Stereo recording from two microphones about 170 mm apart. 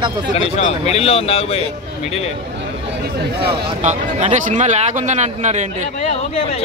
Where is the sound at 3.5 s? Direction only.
40° right (ahead or behind).